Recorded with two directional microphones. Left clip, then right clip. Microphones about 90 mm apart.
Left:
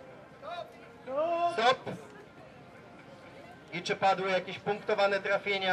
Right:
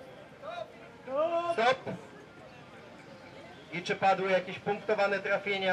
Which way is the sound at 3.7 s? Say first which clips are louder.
Even; 40° left (ahead or behind).